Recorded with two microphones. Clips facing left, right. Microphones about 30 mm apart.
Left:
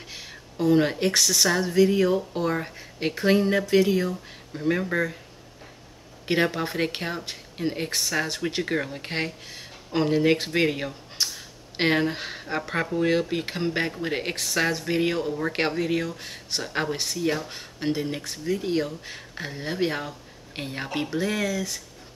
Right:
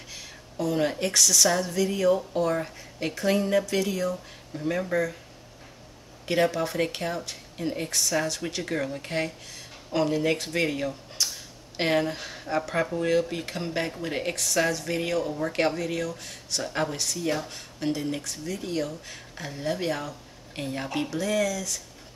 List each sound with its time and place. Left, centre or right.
0.1 s a woman's voice: left
6.2 s a woman's voice: left
17.2 s speech: centre
17.5 s a woman's voice: left